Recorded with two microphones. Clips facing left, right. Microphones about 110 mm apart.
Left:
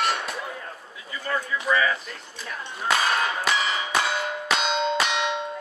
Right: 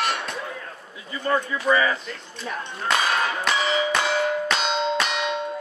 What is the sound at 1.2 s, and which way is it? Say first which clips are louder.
Speech: right 5 dB; 30° right (ahead or behind).